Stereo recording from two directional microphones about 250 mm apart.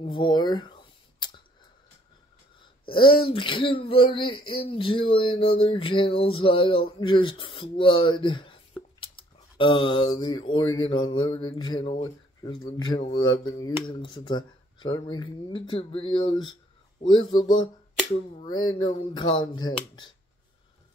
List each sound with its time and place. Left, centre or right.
0.0 s speech: centre
2.9 s speech: centre
9.0 s a sound: centre
12.7 s speech: centre